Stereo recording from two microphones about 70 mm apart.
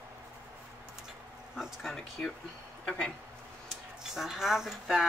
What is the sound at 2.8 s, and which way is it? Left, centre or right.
Speech, centre.